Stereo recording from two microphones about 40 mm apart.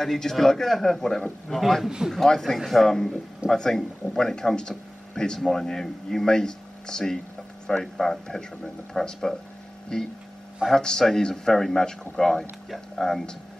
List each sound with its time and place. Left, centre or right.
0.0 s a man's voice: centre
12.9 s speech: centre